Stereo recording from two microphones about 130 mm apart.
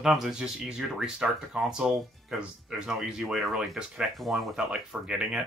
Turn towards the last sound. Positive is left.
turn(degrees=-5)  # may be behind; listen again after turning